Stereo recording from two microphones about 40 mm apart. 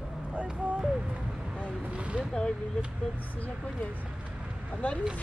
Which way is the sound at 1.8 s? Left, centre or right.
Right.